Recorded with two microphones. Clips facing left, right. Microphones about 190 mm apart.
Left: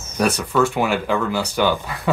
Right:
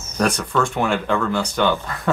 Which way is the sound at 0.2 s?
5° left (ahead or behind).